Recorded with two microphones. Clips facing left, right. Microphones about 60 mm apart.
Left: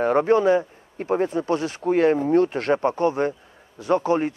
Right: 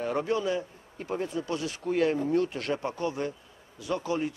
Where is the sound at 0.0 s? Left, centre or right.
Left.